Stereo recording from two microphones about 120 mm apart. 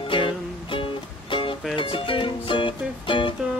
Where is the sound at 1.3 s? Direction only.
45° left (ahead or behind).